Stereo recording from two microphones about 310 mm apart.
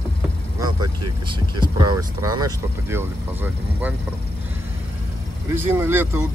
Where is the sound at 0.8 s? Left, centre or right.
Right.